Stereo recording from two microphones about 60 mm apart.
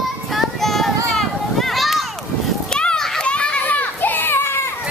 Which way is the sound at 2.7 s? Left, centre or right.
Centre.